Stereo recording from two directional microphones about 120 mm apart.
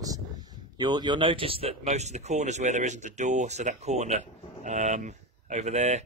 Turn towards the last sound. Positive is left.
turn(degrees=-70)  # may be behind; listen again after turning